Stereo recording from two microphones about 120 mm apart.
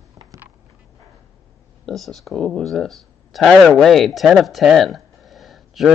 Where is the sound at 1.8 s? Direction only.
Centre (ahead or behind).